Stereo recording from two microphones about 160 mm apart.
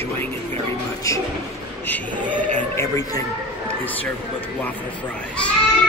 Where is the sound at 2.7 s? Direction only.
20° left (ahead or behind).